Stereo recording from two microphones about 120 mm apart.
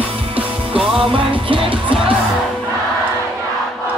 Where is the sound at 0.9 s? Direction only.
50° right (ahead or behind).